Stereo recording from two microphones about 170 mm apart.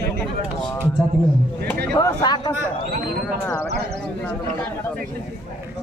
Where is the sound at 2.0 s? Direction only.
25° left (ahead or behind).